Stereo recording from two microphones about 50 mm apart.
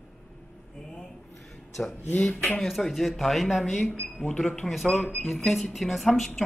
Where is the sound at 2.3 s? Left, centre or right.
Left.